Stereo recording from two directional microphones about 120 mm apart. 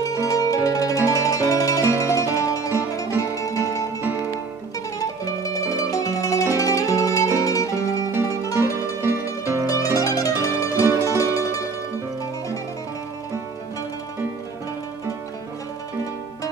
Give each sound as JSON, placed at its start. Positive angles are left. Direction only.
{"t": 0.0, "sound": "music", "side_deg": 30}
{"t": 4.9, "sound": "music", "side_deg": 30}
{"t": 9.0, "sound": "music", "side_deg": -20}
{"t": 9.9, "sound": "mandolin", "side_deg": 30}
{"t": 11.1, "sound": "music", "side_deg": 25}